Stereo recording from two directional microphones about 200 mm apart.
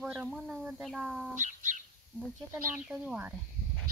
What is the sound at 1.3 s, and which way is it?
Bird, 40° right (ahead or behind).